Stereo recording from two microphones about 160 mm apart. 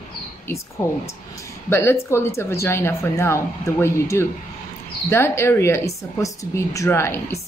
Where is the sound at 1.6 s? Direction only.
15° left (ahead or behind).